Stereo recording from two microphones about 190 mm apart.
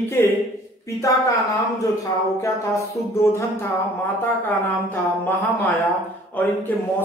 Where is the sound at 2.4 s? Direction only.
15° left (ahead or behind).